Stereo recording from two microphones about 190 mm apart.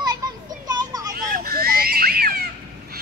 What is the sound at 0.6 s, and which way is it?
Vehicle, 20° right (ahead or behind).